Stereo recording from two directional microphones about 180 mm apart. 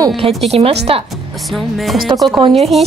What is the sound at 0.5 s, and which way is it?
Speech, 35° right (ahead or behind).